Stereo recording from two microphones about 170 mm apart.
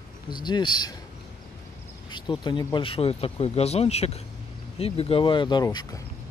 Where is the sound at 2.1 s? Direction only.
25° left (ahead or behind).